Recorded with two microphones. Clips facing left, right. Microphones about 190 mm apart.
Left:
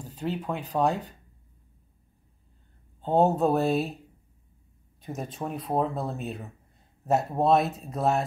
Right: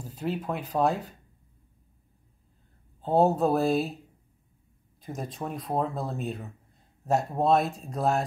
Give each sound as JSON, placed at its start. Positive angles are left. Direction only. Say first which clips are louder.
{"t": 0.0, "sound": "speech", "louder": "even", "side_deg": -5}
{"t": 3.0, "sound": "speech", "louder": "even", "side_deg": 0}
{"t": 5.0, "sound": "speech", "louder": "left 1 dB", "side_deg": 0}